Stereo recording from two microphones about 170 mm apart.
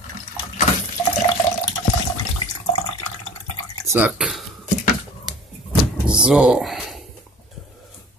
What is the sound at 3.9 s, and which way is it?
Drip, 10° right (ahead or behind).